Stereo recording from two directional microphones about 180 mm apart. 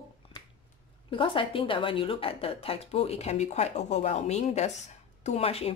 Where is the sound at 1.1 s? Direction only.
30° left (ahead or behind).